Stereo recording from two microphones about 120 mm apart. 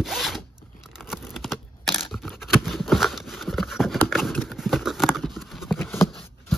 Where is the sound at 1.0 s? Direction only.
Centre (ahead or behind).